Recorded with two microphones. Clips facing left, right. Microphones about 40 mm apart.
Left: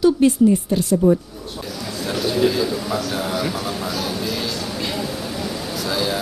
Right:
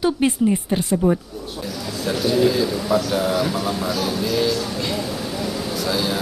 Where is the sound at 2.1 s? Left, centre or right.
Centre.